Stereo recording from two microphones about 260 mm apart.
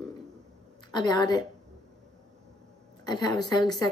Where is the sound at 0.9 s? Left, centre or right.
Centre.